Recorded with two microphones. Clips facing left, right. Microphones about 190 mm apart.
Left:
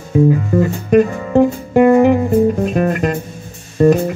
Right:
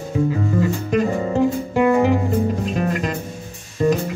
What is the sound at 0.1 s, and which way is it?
Music, 55° left (ahead or behind).